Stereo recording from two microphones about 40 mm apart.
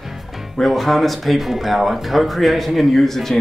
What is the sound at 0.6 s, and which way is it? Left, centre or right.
Speech, centre.